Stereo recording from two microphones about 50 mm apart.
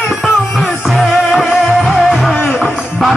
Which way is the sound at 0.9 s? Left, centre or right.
Centre.